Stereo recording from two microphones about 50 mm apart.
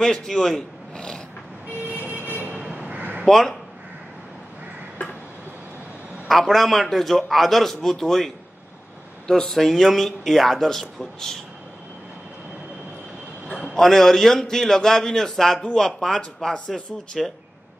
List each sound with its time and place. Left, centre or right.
0.0 s speech: centre
2.1 s vehicle: right
2.7 s a sound: right
3.3 s a man's voice: centre
6.2 s a man's voice: centre
9.3 s a man's voice: centre
13.5 s a sound: left
13.7 s a man's voice: centre